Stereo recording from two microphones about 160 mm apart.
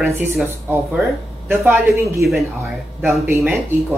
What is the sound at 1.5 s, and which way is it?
Speech, 10° right (ahead or behind).